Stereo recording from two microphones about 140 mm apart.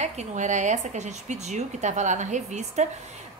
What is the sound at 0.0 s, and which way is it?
Speech, 55° right (ahead or behind).